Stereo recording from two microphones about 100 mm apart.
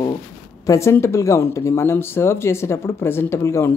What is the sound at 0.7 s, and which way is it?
Speech, 30° left (ahead or behind).